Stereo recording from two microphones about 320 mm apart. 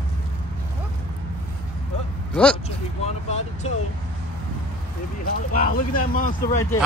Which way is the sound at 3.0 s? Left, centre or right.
Centre.